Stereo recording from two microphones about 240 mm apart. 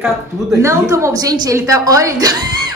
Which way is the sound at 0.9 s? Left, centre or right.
Centre.